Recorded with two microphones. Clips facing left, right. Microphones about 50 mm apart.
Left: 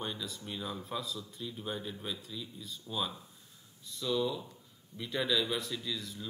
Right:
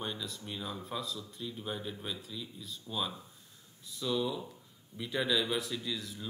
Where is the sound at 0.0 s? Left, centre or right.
Centre.